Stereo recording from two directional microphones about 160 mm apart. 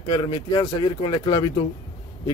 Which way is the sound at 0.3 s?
25° left (ahead or behind).